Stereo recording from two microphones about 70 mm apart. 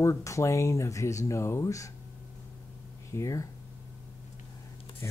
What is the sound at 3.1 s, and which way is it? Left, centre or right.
Speech, left.